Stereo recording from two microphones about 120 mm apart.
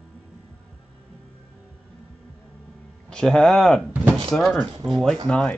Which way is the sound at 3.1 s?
5° left (ahead or behind).